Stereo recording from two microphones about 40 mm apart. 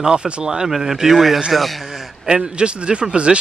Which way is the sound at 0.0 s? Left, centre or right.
Centre.